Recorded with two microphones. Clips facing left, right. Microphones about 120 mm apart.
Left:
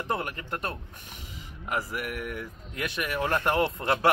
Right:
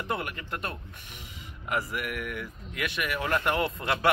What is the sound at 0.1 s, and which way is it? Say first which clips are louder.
Speech: left 2 dB; 35° left (ahead or behind).